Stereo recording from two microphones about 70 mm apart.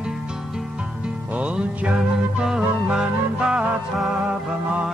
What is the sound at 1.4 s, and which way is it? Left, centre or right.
Music, centre.